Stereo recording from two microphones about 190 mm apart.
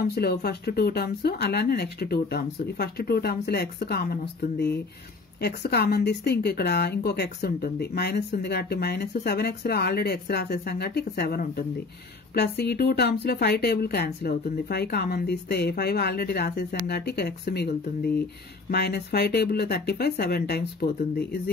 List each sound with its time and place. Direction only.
0.0 s speech: 55° left (ahead or behind)